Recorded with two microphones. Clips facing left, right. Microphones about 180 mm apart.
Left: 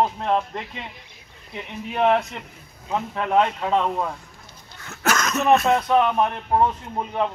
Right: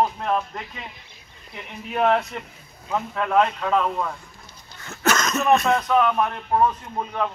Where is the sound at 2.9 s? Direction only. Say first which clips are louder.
Even; 20° left (ahead or behind).